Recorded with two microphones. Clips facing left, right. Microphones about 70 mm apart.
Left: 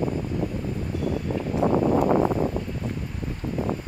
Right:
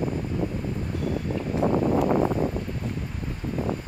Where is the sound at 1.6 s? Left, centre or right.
Left.